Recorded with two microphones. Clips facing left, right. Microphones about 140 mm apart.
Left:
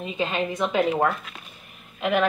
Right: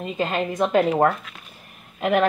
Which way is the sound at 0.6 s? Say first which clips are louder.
Right 5 dB; 40° right (ahead or behind).